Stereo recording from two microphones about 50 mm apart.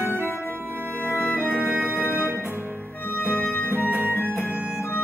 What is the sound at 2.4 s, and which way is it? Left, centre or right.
Music, right.